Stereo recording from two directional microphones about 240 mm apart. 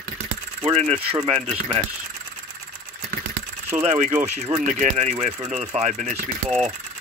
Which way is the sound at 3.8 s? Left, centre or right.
Right.